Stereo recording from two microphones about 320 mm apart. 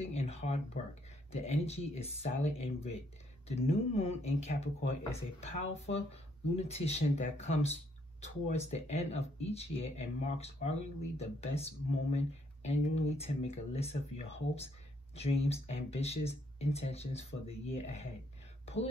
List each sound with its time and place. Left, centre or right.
0.0 s speech: centre